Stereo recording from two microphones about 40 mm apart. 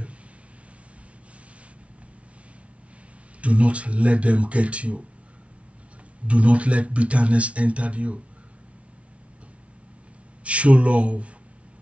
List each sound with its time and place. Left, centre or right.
3.3 s speech: right
6.2 s speech: right
10.4 s speech: right